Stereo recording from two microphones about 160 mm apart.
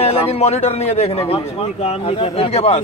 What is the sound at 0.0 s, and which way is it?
A man's voice, 40° left (ahead or behind).